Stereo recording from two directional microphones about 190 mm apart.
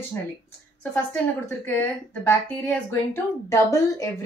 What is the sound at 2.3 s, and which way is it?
A woman's voice, 10° left (ahead or behind).